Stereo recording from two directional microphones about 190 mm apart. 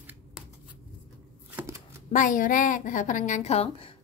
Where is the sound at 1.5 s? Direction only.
10° right (ahead or behind).